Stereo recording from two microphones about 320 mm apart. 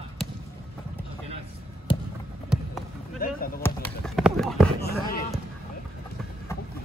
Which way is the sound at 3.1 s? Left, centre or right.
Left.